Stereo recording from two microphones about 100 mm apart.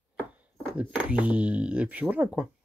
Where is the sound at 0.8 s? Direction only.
15° right (ahead or behind).